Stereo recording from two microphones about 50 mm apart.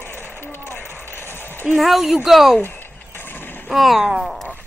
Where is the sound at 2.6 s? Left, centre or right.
Left.